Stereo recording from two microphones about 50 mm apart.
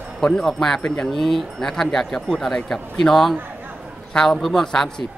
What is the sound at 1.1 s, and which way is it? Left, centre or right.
A man's voice, centre.